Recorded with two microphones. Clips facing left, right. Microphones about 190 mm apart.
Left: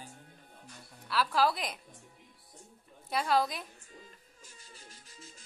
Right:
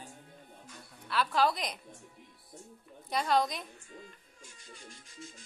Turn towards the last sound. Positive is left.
turn(degrees=35)  # may be behind; listen again after turning